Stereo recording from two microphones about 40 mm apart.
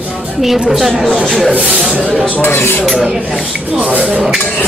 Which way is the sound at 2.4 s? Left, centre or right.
Left.